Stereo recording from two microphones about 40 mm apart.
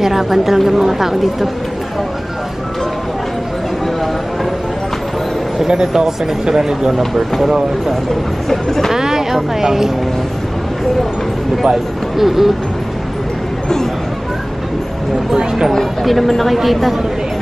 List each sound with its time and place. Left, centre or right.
0.0 s a woman's voice: centre
5.7 s a woman's voice: centre
8.5 s speech: centre
8.9 s a woman's voice: centre
11.6 s speech: centre
15.7 s speech: centre